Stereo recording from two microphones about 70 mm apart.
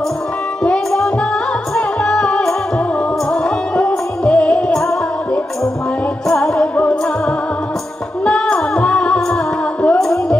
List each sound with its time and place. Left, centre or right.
0.7 s music: centre
6.2 s music: centre
8.3 s music: centre
9.9 s music: centre